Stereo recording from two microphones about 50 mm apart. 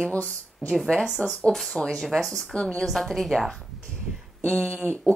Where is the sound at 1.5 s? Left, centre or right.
Centre.